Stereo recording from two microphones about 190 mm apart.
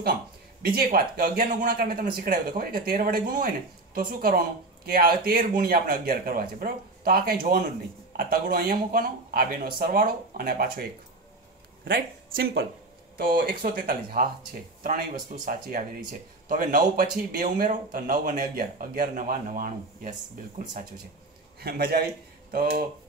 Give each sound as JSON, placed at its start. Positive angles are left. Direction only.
{"t": 0.6, "sound": "speech", "side_deg": -50}
{"t": 11.9, "sound": "speech", "side_deg": -50}
{"t": 15.3, "sound": "speech", "side_deg": -45}
{"t": 21.5, "sound": "a man's voice", "side_deg": -55}